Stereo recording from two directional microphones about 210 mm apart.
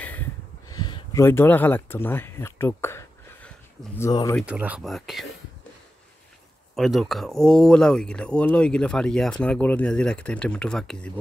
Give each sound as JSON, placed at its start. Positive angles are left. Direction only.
{"t": 0.7, "sound": "speech", "side_deg": 20}
{"t": 4.0, "sound": "speech", "side_deg": 15}
{"t": 4.4, "sound": "speech", "side_deg": -5}
{"t": 6.7, "sound": "speech", "side_deg": 0}